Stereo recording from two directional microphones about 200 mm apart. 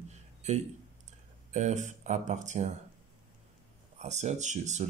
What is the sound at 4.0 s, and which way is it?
Speech, 35° right (ahead or behind).